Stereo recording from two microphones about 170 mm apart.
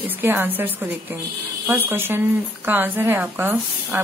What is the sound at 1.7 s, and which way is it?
A woman's voice, 15° right (ahead or behind).